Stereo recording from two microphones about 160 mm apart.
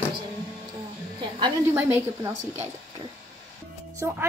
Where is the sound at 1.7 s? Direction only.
15° right (ahead or behind).